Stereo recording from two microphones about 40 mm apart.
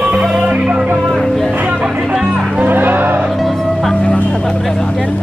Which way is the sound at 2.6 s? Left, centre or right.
Right.